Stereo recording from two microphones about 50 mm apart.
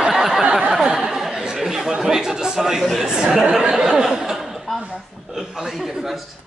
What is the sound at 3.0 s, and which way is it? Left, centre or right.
A man's voice, centre.